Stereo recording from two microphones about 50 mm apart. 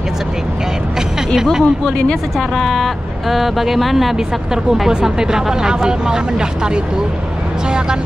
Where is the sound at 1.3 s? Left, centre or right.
Centre.